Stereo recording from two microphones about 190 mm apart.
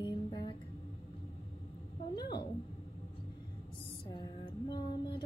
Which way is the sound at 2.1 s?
20° left (ahead or behind).